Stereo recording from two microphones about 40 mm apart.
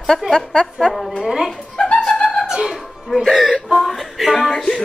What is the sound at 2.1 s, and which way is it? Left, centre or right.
Music, left.